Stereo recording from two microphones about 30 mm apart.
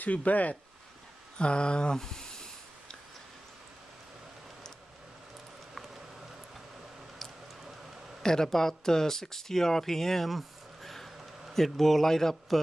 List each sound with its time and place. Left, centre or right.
0.0 s speech: left
1.4 s a sound: left
2.0 s speech: centre
8.2 s speech: left
10.3 s a sound: centre
11.5 s speech: centre